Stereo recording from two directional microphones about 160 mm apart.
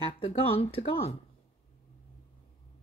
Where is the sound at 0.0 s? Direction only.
35° left (ahead or behind).